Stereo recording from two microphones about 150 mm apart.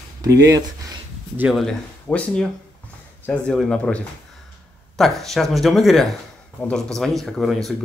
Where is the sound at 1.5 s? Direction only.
Centre (ahead or behind).